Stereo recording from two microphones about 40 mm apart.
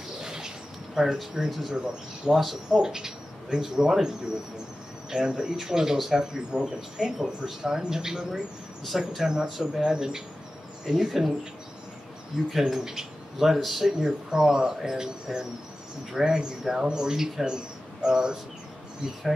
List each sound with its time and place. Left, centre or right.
0.2 s a sound: centre
1.1 s speech: centre
5.1 s speech: centre
12.4 s speech: centre
13.9 s speech: centre